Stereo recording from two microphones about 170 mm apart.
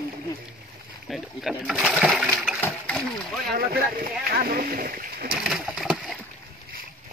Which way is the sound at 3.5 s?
65° right (ahead or behind).